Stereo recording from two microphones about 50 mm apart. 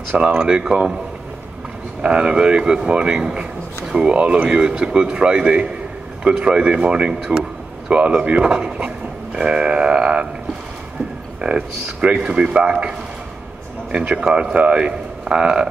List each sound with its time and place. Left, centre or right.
0.2 s speech: right
2.0 s speech: right
3.8 s speech: centre
4.1 s speech: right
11.4 s speech: right
13.9 s speech: centre